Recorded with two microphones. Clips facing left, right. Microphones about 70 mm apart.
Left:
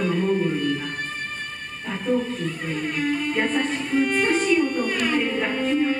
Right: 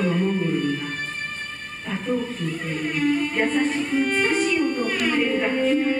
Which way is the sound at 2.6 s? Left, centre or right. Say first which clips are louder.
Right 3 dB; centre.